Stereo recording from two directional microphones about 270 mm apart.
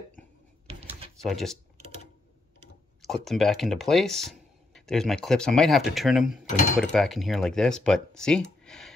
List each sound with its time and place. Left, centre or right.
0.7 s drawer open or close: right
1.2 s speech: centre
3.3 s speech: centre